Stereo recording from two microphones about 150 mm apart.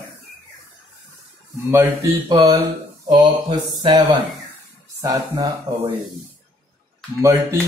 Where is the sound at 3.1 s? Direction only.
30° right (ahead or behind).